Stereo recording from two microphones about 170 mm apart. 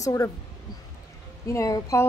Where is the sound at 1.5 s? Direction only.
20° left (ahead or behind).